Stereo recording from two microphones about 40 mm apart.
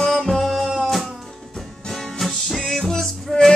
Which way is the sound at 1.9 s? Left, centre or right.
Centre.